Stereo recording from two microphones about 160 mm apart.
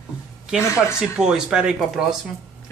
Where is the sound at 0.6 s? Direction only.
20° left (ahead or behind).